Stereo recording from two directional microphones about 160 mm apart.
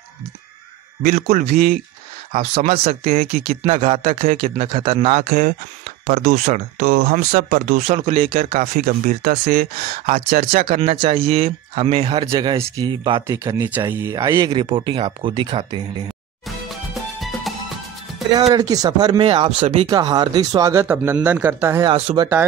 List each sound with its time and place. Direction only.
1.0 s speech: 60° right (ahead or behind)
2.3 s speech: 40° right (ahead or behind); by 9.9 s 65° right (ahead or behind)
10.0 s speech: 50° right (ahead or behind)
10.7 s speech: 35° right (ahead or behind)
14.5 s speech: 30° right (ahead or behind)
17.2 s music: centre (ahead or behind)
18.5 s speech: 25° right (ahead or behind); by 19.9 s 40° right (ahead or behind)
19.9 s speech: 25° right (ahead or behind)
21.8 s speech: 35° right (ahead or behind)